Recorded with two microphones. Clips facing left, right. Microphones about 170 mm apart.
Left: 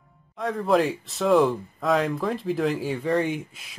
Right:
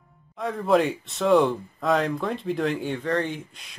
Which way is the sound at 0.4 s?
Centre (ahead or behind).